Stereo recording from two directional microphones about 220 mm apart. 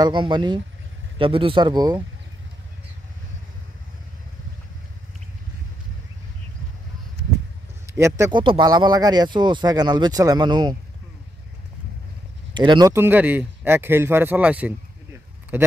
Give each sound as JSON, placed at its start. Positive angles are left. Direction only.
{"t": 0.0, "sound": "speech", "side_deg": -20}
{"t": 7.8, "sound": "speech", "side_deg": -15}
{"t": 12.5, "sound": "speech", "side_deg": -20}